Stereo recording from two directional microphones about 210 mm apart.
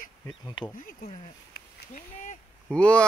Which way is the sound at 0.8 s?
40° left (ahead or behind).